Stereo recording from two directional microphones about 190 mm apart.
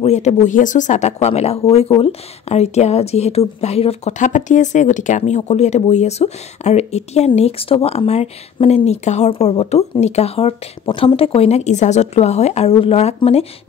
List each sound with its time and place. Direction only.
0.0 s a woman's voice: 35° left (ahead or behind)